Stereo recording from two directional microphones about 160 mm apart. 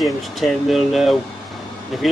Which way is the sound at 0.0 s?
Centre (ahead or behind).